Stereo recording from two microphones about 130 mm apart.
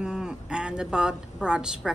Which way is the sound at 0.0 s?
5° right (ahead or behind).